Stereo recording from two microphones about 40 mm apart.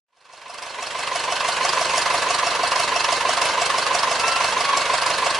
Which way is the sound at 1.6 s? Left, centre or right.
Centre.